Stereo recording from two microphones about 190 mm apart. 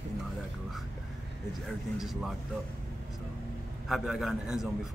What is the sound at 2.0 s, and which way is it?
Speech, centre (ahead or behind).